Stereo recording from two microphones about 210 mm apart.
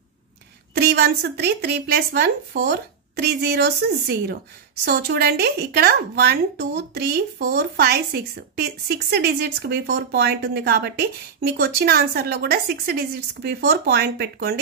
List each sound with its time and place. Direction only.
0.7 s speech: 50° right (ahead or behind)